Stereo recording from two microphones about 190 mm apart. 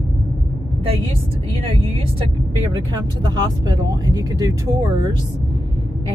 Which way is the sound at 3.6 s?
20° right (ahead or behind).